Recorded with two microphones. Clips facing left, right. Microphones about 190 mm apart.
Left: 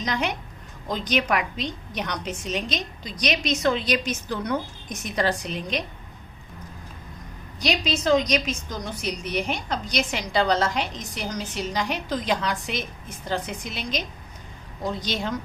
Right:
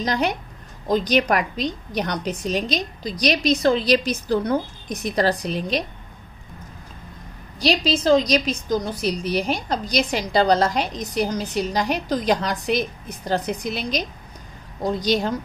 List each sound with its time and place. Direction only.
0.0 s a woman's voice: 35° right (ahead or behind)
7.6 s a woman's voice: 30° right (ahead or behind)